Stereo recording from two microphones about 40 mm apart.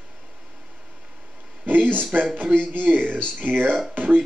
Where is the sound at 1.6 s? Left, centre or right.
Right.